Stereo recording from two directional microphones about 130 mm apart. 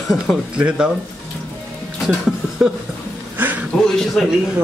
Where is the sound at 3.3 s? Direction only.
15° right (ahead or behind).